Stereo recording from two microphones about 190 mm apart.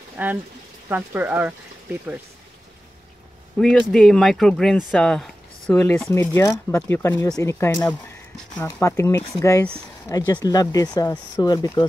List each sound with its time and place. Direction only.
0.2 s speech: 10° right (ahead or behind)
3.5 s speech: centre (ahead or behind); by 11.8 s 20° left (ahead or behind)